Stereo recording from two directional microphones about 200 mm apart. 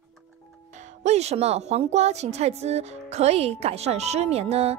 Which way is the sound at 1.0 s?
30° right (ahead or behind).